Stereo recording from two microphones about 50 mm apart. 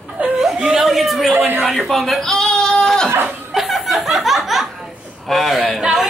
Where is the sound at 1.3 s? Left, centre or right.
Right.